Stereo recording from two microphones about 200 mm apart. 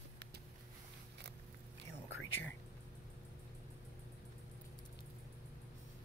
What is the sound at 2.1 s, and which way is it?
Whispering, 70° left (ahead or behind).